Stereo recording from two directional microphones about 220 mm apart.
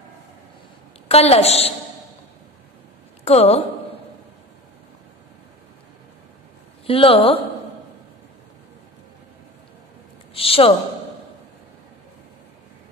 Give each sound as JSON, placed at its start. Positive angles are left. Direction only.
{"t": 1.0, "sound": "a woman's voice", "side_deg": 25}
{"t": 3.3, "sound": "a woman's voice", "side_deg": 30}
{"t": 6.9, "sound": "a woman's voice", "side_deg": 25}
{"t": 10.3, "sound": "a woman's voice", "side_deg": 25}